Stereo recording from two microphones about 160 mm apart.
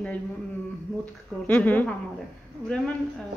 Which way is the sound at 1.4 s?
10° left (ahead or behind).